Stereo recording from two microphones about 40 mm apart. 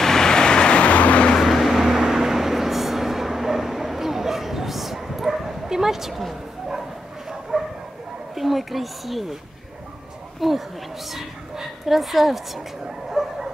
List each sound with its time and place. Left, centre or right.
0.0 s vehicle: centre; by 1.3 s left
1.4 s vehicle: centre
7.5 s bow-wow: centre
8.4 s a sound: centre
10.4 s speech: centre
12.8 s bow-wow: centre